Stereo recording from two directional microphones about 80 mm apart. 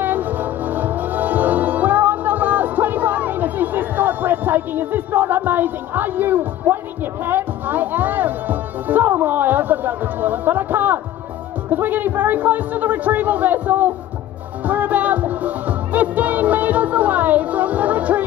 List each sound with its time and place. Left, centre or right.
0.0 s music: right
11.7 s a man's voice: right
14.6 s music: right